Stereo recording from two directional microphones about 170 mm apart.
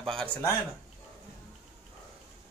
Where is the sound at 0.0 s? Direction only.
5° left (ahead or behind).